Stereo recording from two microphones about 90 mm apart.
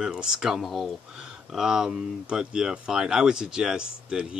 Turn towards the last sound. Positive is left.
turn(degrees=-5)  # may be behind; listen again after turning